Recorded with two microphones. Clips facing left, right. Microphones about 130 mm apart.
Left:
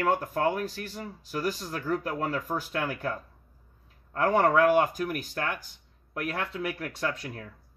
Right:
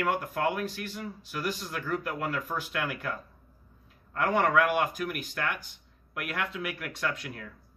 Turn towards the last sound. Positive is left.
turn(degrees=35)  # may be behind; listen again after turning